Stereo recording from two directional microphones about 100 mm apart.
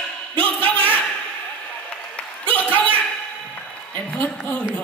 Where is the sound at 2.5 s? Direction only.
15° left (ahead or behind).